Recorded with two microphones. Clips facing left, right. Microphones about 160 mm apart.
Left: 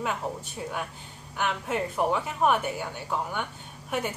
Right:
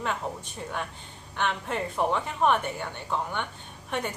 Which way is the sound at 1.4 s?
5° left (ahead or behind).